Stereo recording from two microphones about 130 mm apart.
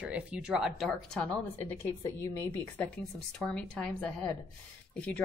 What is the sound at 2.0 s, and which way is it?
Speech, 25° left (ahead or behind).